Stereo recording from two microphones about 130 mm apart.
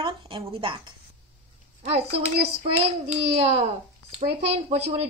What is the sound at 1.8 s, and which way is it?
A woman's voice, 50° right (ahead or behind).